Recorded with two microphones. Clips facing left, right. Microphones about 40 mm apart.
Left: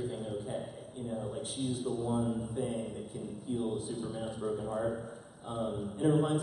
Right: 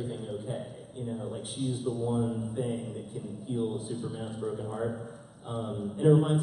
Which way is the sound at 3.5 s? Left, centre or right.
Centre.